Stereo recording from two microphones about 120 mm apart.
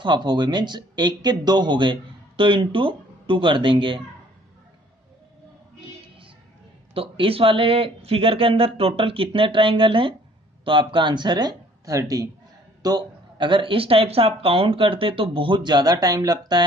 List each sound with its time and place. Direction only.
0.0 s speech: 40° right (ahead or behind)
6.9 s speech: 50° right (ahead or behind); by 16.6 s 35° right (ahead or behind)